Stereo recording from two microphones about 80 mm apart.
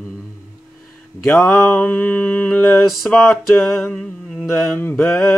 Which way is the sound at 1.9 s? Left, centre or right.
Left.